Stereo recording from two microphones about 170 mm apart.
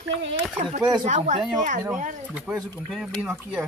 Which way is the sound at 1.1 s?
45° right (ahead or behind).